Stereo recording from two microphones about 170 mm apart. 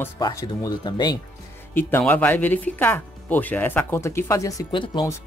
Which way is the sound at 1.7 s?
10° left (ahead or behind).